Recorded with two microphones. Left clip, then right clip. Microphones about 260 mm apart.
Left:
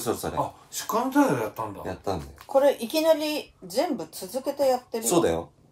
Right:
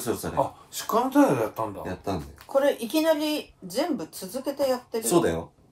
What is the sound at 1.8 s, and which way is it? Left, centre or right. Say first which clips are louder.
Speech: left 1 dB; centre.